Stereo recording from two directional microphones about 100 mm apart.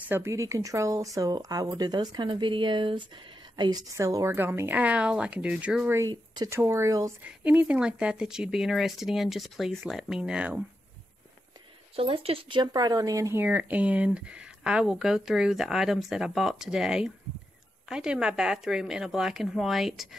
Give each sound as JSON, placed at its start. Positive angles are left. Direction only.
{"t": 0.1, "sound": "a woman's voice", "side_deg": -30}
{"t": 3.9, "sound": "speech", "side_deg": -30}
{"t": 6.0, "sound": "speech", "side_deg": -40}
{"t": 6.5, "sound": "speech", "side_deg": -30}
{"t": 7.2, "sound": "speech", "side_deg": -15}
{"t": 11.9, "sound": "a woman's voice", "side_deg": -65}
{"t": 13.4, "sound": "speech", "side_deg": -15}